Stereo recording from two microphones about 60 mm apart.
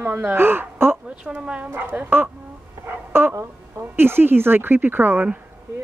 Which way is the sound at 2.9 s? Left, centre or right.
Right.